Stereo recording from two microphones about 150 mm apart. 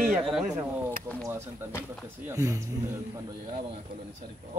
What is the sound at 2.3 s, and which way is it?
Speech, 20° right (ahead or behind).